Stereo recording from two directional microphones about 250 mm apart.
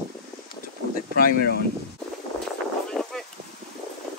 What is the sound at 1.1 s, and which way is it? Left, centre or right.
Speech, left.